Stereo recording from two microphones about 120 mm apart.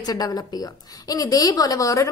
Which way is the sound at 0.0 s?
35° left (ahead or behind).